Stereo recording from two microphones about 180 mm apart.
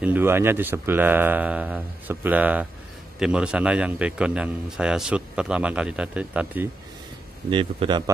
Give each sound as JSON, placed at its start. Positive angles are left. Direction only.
{"t": 0.0, "sound": "a man's voice", "side_deg": -10}
{"t": 7.4, "sound": "a man's voice", "side_deg": -30}